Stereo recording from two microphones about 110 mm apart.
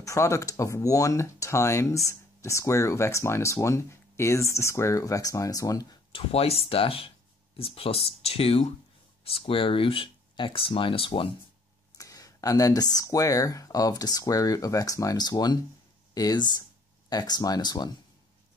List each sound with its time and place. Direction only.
0.0 s speech: 30° left (ahead or behind)
6.1 s speech: 65° left (ahead or behind)
12.0 s speech: 30° left (ahead or behind)